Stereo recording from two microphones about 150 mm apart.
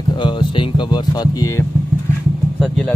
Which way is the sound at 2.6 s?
5° left (ahead or behind).